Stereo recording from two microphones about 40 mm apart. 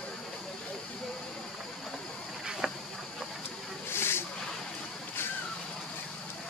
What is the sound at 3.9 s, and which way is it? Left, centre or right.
Snake, left.